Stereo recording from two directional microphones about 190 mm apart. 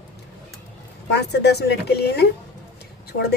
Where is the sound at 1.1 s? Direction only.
60° left (ahead or behind).